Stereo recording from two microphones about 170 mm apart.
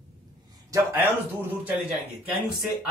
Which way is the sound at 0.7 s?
10° right (ahead or behind).